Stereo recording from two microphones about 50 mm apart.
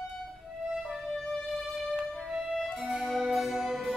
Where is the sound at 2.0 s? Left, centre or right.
Centre.